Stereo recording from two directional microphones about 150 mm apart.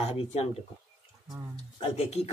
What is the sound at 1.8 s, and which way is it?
Speech, 45° left (ahead or behind).